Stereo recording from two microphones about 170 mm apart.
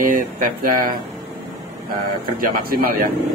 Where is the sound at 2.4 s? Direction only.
60° right (ahead or behind).